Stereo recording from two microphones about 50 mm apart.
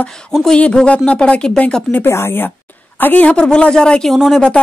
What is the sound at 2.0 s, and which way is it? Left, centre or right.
Speech, left.